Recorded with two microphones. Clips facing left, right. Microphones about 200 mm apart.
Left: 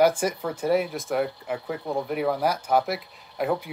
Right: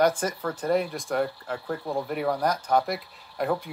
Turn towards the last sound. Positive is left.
turn(degrees=0)  # may be behind; listen again after turning